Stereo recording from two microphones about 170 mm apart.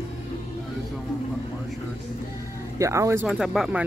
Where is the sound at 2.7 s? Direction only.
15° right (ahead or behind).